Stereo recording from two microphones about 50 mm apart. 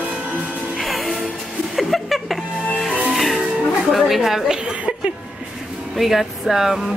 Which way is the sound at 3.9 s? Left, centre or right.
Centre.